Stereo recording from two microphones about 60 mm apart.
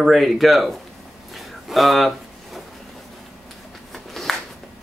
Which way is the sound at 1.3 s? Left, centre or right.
Centre.